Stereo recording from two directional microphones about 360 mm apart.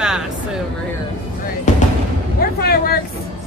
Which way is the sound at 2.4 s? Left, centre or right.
Left.